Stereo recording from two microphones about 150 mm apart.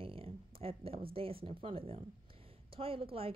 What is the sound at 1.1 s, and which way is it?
Speech, 40° right (ahead or behind).